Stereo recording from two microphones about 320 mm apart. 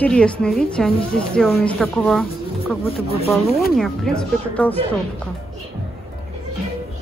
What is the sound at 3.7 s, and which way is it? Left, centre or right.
A woman's voice, centre.